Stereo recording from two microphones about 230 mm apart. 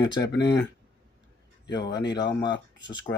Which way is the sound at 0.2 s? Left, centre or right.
Left.